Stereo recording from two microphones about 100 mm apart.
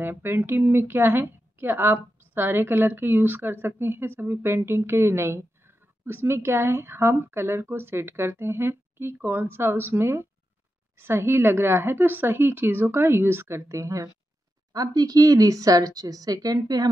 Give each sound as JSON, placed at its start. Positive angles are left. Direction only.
{"t": 0.0, "sound": "a woman's voice", "side_deg": -25}